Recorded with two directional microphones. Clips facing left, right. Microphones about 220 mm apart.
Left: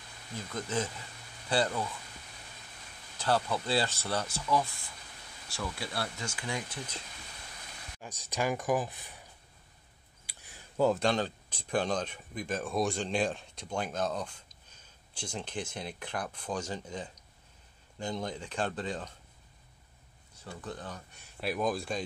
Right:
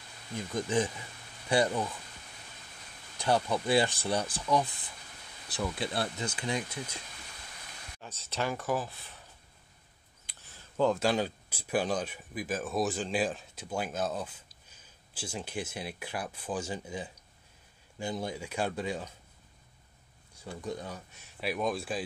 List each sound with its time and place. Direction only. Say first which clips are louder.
0.5 s speech: right 4 dB; 15° right (ahead or behind)
3.2 s speech: right 2 dB; 15° right (ahead or behind)
8.0 s speech: left 1 dB; 15° left (ahead or behind)
10.2 s a sound: left 2 dB; 10° left (ahead or behind)
11.0 s speech: right 1 dB; 5° right (ahead or behind)
20.3 s speech: right 4 dB; 10° right (ahead or behind)